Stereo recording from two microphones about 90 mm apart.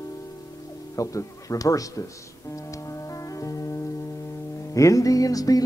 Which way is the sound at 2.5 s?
35° left (ahead or behind).